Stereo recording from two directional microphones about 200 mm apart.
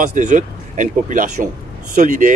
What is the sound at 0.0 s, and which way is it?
Speech, 35° right (ahead or behind).